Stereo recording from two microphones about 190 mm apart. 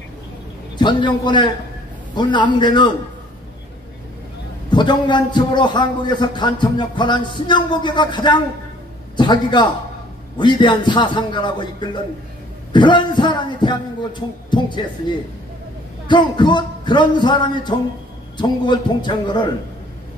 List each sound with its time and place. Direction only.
0.7 s a man's voice: 25° left (ahead or behind)
4.6 s a man's voice: 25° left (ahead or behind)
16.1 s a man's voice: 25° left (ahead or behind)